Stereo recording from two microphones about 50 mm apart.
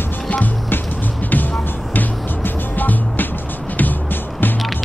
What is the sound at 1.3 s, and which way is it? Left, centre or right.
Music, left.